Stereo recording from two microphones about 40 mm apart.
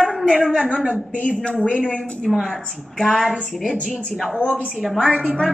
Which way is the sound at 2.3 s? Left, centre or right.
Centre.